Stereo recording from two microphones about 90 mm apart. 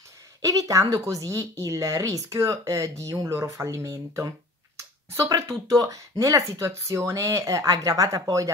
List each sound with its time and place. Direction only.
0.4 s speech: 40° right (ahead or behind)